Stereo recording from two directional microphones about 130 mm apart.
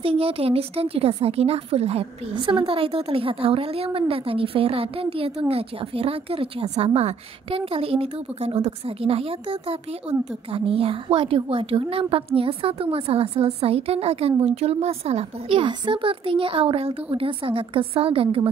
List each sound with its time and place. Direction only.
0.0 s a woman's voice: 45° right (ahead or behind)
2.3 s a woman's voice: 40° right (ahead or behind)